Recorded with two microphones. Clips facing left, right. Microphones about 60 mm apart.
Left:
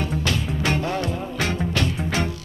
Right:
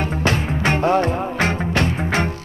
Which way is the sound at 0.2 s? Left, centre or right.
Right.